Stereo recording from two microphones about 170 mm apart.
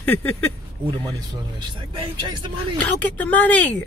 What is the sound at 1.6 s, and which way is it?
Speech, 25° right (ahead or behind).